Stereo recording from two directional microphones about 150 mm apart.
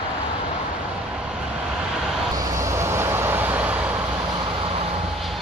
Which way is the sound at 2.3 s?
20° right (ahead or behind).